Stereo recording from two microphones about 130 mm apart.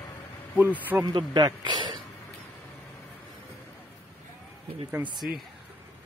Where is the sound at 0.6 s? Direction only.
15° right (ahead or behind).